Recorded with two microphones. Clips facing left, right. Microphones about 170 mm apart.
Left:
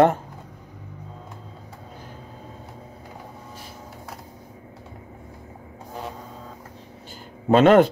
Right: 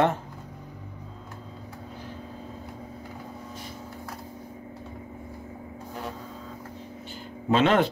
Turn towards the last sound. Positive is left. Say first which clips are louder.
# left 7 dB
turn(degrees=45)  # may be behind; listen again after turning